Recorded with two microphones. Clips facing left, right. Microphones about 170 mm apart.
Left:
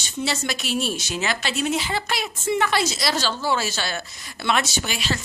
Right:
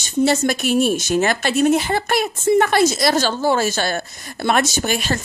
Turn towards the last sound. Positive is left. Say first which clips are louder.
# right 6 dB
turn(degrees=-50)  # may be behind; listen again after turning